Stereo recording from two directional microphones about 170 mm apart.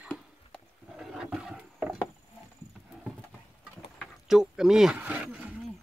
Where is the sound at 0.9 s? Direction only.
5° right (ahead or behind).